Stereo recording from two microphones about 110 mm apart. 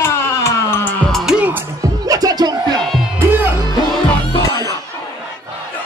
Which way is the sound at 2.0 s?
35° right (ahead or behind).